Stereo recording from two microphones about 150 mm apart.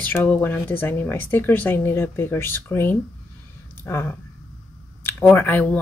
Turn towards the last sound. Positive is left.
turn(degrees=10)  # may be behind; listen again after turning